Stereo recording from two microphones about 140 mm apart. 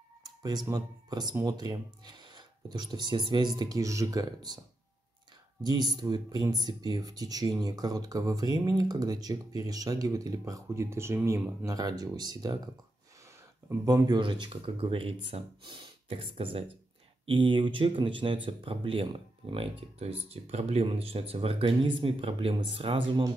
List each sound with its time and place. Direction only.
0.2 s speech: 30° right (ahead or behind)
5.6 s speech: 30° right (ahead or behind)
13.8 s speech: 30° right (ahead or behind)